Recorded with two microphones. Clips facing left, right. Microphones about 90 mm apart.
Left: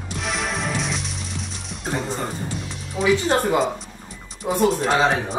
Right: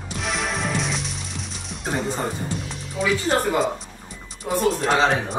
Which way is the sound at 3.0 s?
20° left (ahead or behind).